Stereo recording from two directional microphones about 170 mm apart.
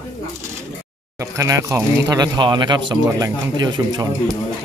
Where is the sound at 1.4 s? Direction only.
20° right (ahead or behind).